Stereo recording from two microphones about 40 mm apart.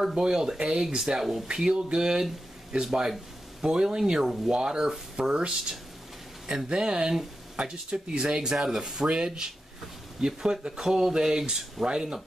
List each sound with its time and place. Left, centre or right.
0.0 s speech: centre